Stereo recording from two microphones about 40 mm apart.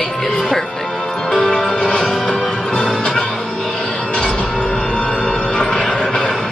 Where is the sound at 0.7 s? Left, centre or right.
Centre.